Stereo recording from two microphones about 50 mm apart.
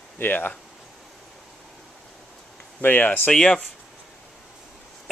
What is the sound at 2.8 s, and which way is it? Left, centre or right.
Speech, left.